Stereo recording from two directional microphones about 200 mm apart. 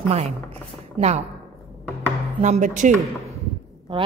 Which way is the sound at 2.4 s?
35° right (ahead or behind).